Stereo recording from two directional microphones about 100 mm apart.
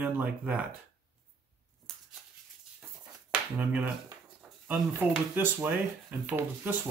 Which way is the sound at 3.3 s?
15° right (ahead or behind).